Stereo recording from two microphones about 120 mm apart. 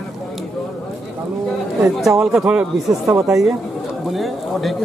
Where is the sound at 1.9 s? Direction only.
5° right (ahead or behind).